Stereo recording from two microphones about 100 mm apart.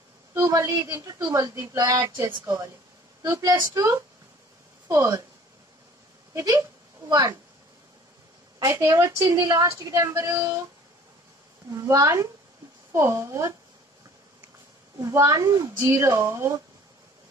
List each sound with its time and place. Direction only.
0.3 s a sound: 30° right (ahead or behind)
0.8 s speech: 30° right (ahead or behind)
2.0 s speech: 25° right (ahead or behind)
2.4 s speech: 35° right (ahead or behind)
6.3 s speech: 35° right (ahead or behind)
8.5 s speech: 35° right (ahead or behind)
11.7 s speech: 35° right (ahead or behind)
15.0 s speech: 35° right (ahead or behind)